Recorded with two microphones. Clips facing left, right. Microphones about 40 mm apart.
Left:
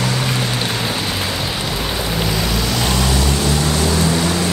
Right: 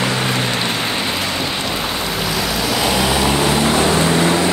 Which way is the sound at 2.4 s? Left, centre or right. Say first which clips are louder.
Right 1 dB; centre.